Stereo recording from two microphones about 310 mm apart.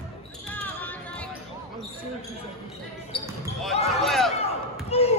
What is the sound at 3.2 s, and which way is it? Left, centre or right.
Basketball bounce, centre.